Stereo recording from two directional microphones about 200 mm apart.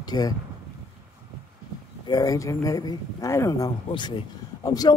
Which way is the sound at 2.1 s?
20° left (ahead or behind).